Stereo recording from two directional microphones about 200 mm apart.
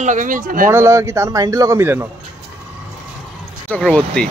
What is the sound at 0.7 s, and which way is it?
A man's voice, 15° right (ahead or behind).